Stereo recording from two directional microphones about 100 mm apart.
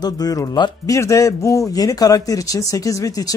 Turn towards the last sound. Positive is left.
turn(degrees=35)  # may be behind; listen again after turning